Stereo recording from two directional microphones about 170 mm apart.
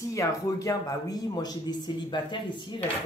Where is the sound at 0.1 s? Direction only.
20° left (ahead or behind).